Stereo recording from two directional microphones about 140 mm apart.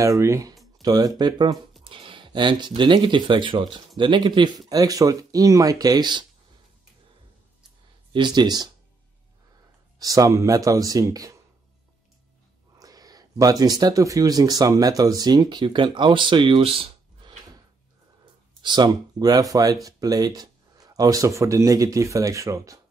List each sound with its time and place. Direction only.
0.0 s speech: 20° right (ahead or behind)
8.1 s speech: 30° right (ahead or behind)
9.9 s speech: 25° right (ahead or behind)
12.7 s speech: 25° right (ahead or behind)
18.6 s speech: 30° right (ahead or behind)